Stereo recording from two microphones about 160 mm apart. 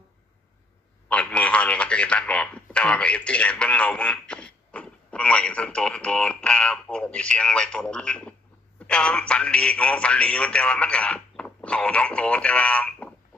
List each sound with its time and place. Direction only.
1.0 s speech: 10° left (ahead or behind)